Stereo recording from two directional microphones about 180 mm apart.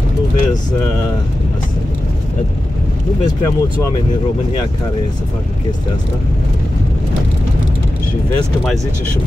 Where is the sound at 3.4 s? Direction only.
15° left (ahead or behind).